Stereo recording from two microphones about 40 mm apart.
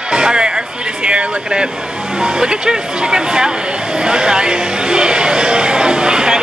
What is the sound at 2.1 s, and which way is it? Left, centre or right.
Speech, centre.